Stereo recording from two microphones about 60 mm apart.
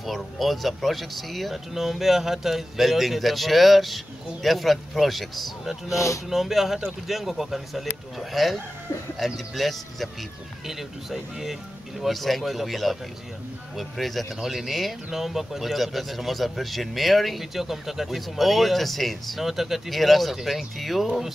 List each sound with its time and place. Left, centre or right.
0.0 s speech: centre
5.9 s speech: left
6.3 s speech: centre